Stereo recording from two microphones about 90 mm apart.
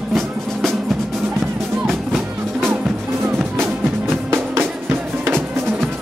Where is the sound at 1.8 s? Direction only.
Centre (ahead or behind).